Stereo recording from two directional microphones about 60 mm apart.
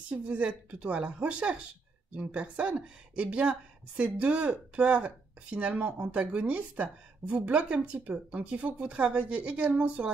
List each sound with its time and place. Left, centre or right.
0.1 s a woman's voice: centre